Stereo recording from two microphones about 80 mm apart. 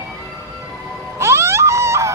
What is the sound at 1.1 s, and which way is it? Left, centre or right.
Music, right.